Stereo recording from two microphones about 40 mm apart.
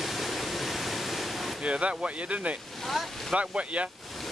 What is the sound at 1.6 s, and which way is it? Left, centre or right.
Speech, right.